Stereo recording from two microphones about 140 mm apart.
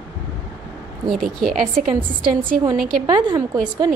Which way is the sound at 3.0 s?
30° right (ahead or behind).